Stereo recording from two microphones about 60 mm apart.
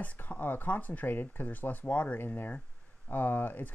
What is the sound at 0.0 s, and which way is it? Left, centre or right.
Speech, left.